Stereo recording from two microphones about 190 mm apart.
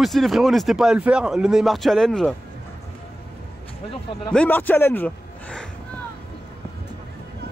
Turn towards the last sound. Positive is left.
turn(degrees=5)  # may be behind; listen again after turning